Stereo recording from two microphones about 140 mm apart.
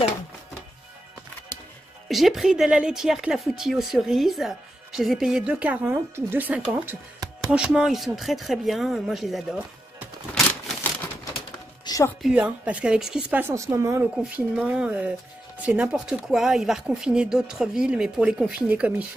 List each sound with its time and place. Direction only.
2.0 s speech: centre (ahead or behind)
11.8 s music: 25° left (ahead or behind)
12.2 s speech: 5° right (ahead or behind)
14.1 s speech: 5° right (ahead or behind)